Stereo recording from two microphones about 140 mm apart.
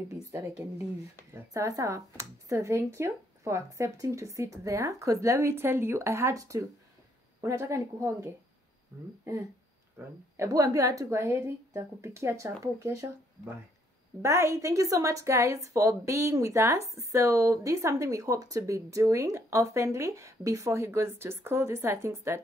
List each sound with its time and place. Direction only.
0.1 s a woman's voice: 20° right (ahead or behind)
9.9 s a woman's voice: 20° right (ahead or behind)
14.2 s a woman's voice: 20° right (ahead or behind)